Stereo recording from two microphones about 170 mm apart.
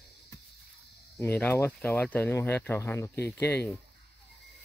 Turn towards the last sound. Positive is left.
turn(degrees=10)  # may be behind; listen again after turning